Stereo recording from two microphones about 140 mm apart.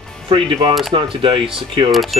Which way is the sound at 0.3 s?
40° right (ahead or behind).